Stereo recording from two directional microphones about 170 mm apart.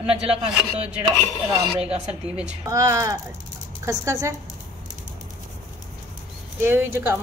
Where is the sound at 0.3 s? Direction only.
35° right (ahead or behind).